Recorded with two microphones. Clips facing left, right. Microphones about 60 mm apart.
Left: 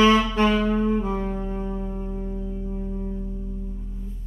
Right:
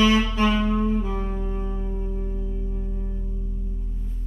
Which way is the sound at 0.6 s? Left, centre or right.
Left.